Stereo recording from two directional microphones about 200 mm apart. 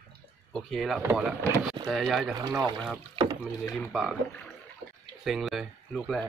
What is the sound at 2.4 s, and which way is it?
Speech, 20° right (ahead or behind).